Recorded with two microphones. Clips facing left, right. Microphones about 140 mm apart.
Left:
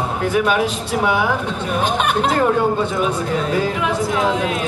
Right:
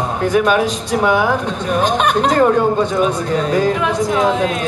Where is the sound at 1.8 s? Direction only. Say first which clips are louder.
Right 3 dB; 40° right (ahead or behind).